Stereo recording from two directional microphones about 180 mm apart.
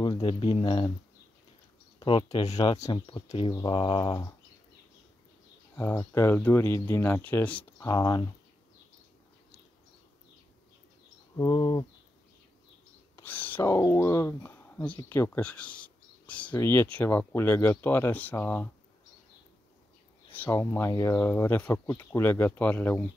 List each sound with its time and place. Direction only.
0.0 s speech: 30° left (ahead or behind)
2.0 s speech: 30° left (ahead or behind)
5.8 s speech: 15° left (ahead or behind)
7.9 s speech: 20° left (ahead or behind)
11.3 s speech: 25° left (ahead or behind)
13.1 s speech: 10° left (ahead or behind)
20.2 s speech: 10° left (ahead or behind)